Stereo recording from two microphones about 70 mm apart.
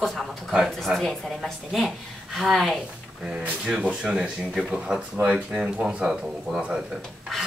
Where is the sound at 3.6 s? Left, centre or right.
Centre.